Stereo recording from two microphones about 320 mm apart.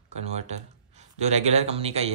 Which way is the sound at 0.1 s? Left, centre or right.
Right.